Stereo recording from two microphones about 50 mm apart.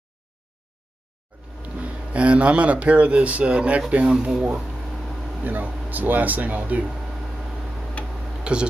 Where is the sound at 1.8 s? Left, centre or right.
Right.